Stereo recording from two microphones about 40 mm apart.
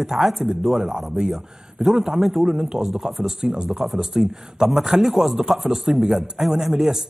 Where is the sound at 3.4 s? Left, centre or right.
Right.